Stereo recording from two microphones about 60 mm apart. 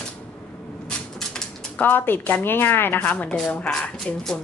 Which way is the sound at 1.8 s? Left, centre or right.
Left.